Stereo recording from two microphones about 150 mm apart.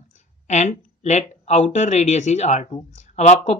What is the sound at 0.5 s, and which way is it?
Speech, 50° left (ahead or behind).